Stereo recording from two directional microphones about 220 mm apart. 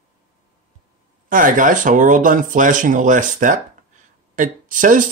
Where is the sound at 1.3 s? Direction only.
35° right (ahead or behind).